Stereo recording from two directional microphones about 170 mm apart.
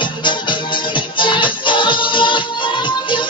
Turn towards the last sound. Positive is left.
turn(degrees=30)  # may be behind; listen again after turning